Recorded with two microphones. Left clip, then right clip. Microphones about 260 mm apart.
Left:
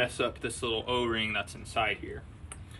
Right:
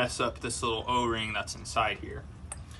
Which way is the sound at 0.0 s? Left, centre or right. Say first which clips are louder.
Even; centre.